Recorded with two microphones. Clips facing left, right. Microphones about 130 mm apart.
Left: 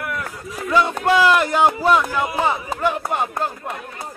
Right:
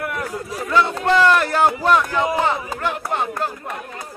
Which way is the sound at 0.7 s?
15° left (ahead or behind).